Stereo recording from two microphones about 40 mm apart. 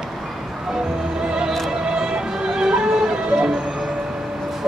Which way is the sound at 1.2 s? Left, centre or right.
Centre.